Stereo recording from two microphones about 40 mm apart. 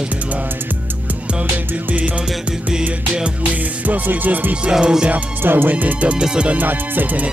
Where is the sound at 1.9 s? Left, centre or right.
Right.